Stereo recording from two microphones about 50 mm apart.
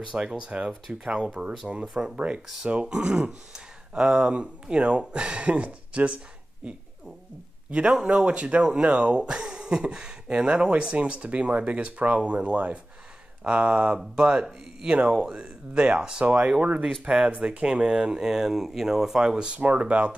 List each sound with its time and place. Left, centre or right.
0.1 s speech: centre
2.1 s speech: right
7.9 s speech: centre
17.3 s speech: right